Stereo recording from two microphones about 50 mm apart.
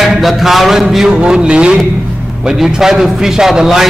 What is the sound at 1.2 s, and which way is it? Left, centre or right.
A man's voice, centre.